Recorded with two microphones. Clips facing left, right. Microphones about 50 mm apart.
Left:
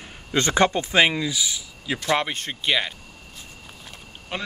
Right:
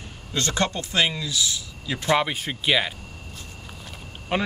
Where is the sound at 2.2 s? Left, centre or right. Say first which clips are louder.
Right 2 dB; centre.